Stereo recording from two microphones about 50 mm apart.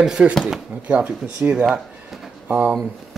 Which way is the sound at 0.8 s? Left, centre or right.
Right.